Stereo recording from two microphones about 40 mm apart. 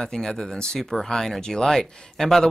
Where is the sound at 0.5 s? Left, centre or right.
Centre.